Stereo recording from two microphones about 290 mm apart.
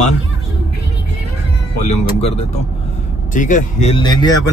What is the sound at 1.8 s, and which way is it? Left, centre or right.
Speech, left.